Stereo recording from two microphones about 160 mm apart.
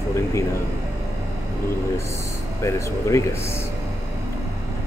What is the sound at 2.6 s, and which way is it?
Speech, 20° left (ahead or behind).